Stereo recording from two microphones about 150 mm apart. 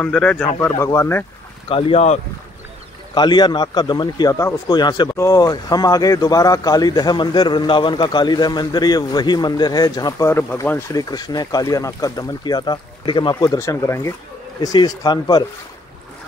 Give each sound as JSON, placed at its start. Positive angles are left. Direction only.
{"t": 0.0, "sound": "speech", "side_deg": 5}
{"t": 0.6, "sound": "speech", "side_deg": 20}
{"t": 1.7, "sound": "speech", "side_deg": 40}
{"t": 3.2, "sound": "speech", "side_deg": 30}